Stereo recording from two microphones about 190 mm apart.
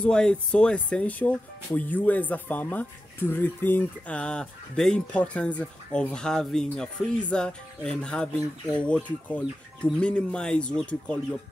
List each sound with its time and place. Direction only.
0.0 s speech: 5° left (ahead or behind)